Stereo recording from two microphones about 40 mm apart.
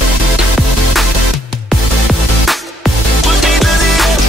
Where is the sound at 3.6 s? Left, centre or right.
Centre.